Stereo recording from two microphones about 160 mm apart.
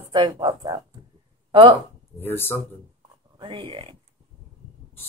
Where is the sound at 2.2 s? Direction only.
15° left (ahead or behind).